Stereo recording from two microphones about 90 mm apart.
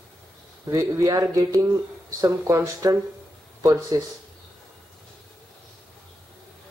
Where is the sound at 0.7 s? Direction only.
35° right (ahead or behind).